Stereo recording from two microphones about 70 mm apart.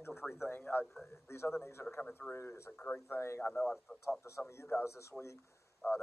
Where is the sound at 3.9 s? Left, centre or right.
Centre.